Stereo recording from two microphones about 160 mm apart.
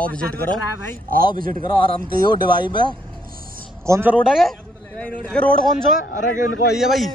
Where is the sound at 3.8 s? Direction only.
15° right (ahead or behind).